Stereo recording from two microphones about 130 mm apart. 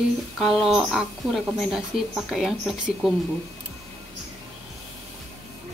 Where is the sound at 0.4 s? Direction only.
Centre (ahead or behind).